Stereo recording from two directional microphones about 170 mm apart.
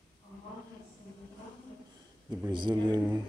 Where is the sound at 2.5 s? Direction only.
25° right (ahead or behind).